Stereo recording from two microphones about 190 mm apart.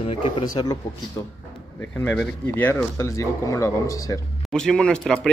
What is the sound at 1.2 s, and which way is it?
Speech, 15° left (ahead or behind).